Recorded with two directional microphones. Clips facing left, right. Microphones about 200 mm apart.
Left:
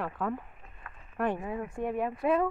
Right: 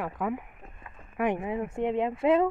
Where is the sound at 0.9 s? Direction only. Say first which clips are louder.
Right 3 dB; 15° right (ahead or behind).